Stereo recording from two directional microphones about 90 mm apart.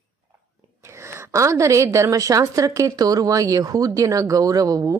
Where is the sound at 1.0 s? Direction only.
30° right (ahead or behind).